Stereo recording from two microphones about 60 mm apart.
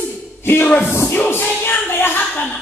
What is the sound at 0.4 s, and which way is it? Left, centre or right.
Music, left.